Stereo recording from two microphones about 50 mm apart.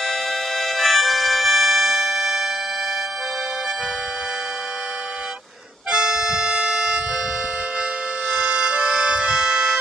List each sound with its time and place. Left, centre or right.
0.0 s music: centre
5.9 s music: centre
8.3 s music: right